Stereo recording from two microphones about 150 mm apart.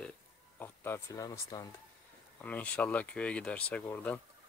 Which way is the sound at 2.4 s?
10° left (ahead or behind).